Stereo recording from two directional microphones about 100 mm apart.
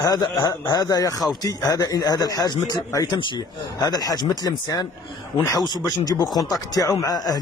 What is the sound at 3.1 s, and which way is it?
Speech, 50° left (ahead or behind).